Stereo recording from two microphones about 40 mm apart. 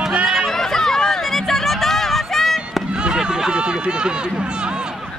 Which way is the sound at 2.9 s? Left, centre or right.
Right.